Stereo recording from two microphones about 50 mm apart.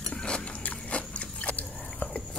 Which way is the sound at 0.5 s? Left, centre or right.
Left.